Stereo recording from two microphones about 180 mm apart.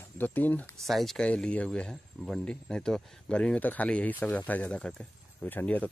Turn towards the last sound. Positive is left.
turn(degrees=10)  # may be behind; listen again after turning